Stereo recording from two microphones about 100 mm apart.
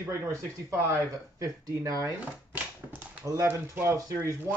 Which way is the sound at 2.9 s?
15° right (ahead or behind).